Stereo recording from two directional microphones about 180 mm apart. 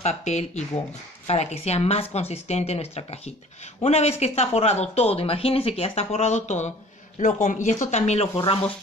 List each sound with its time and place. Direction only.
0.0 s speech: 40° left (ahead or behind)